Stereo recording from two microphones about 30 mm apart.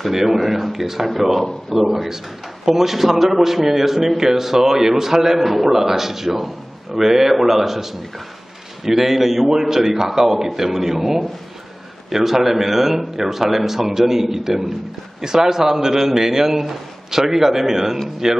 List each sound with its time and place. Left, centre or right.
0.1 s a man's voice: centre
12.1 s a man's voice: centre